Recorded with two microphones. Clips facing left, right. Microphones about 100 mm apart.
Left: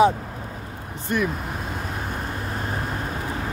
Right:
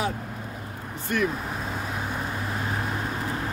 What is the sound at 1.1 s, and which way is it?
Speech, 25° left (ahead or behind).